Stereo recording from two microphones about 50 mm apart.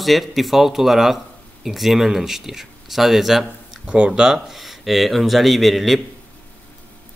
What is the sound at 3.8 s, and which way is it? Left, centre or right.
Speech, centre.